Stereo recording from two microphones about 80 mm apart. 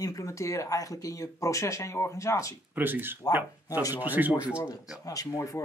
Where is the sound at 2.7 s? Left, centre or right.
Right.